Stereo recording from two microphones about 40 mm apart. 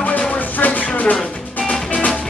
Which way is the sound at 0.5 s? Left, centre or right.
Left.